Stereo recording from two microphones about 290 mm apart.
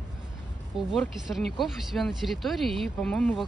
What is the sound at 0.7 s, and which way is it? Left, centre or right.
Speech, centre.